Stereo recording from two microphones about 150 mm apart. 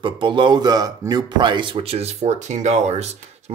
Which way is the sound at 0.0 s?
30° right (ahead or behind).